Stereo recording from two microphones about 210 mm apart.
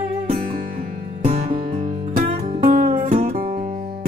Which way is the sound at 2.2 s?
30° right (ahead or behind).